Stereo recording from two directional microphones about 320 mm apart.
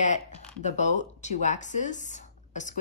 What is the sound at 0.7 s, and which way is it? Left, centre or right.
Speech, left.